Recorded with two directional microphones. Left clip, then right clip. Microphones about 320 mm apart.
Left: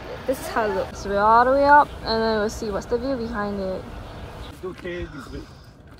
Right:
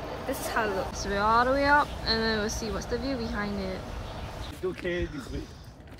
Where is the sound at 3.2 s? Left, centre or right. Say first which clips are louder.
Left 6 dB; centre.